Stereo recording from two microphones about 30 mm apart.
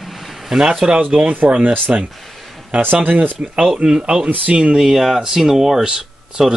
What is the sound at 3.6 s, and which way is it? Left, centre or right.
Speech, right.